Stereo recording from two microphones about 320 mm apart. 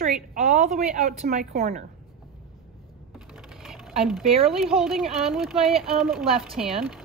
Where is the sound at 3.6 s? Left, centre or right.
Centre.